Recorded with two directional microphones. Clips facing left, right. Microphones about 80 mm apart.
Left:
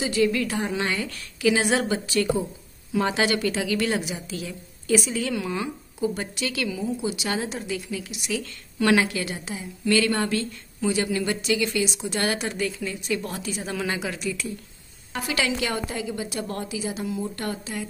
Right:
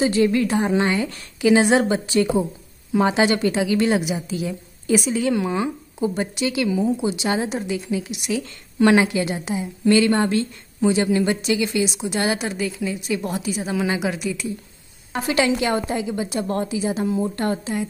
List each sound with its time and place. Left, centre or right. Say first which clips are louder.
0.0 s a woman's voice: right 5 dB; right; by 14.5 s centre
15.1 s a woman's voice: right 6 dB; right